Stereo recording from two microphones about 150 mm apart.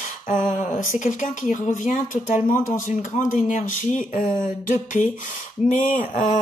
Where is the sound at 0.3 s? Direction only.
55° left (ahead or behind).